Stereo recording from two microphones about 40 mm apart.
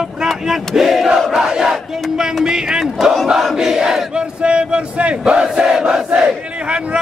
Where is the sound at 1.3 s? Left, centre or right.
Centre.